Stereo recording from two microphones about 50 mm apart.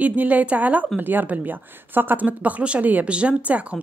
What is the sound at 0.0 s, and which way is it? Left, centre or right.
Speech, right.